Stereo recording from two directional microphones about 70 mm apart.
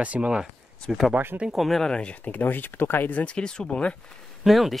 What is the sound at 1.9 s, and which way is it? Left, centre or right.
Speech, centre.